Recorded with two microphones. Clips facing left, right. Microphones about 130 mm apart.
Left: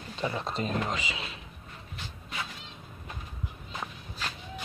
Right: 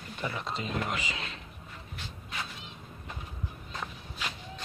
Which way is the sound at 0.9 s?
15° left (ahead or behind).